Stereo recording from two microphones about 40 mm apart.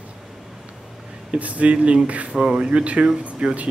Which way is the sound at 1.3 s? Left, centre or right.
Right.